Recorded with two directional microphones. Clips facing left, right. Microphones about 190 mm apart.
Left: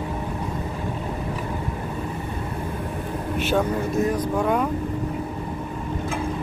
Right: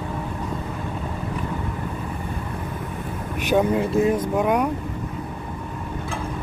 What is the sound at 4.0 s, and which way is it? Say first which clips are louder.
Speech: right 1 dB; 20° right (ahead or behind).